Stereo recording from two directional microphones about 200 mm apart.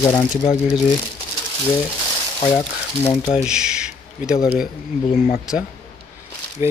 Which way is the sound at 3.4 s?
5° right (ahead or behind).